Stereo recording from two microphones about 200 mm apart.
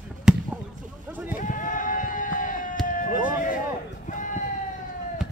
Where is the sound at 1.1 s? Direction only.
10° right (ahead or behind).